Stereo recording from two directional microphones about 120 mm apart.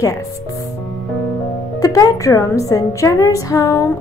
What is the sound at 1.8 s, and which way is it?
A woman's voice, 30° left (ahead or behind).